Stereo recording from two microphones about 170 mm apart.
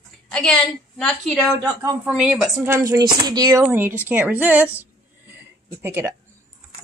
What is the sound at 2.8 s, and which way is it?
Speech, 25° right (ahead or behind).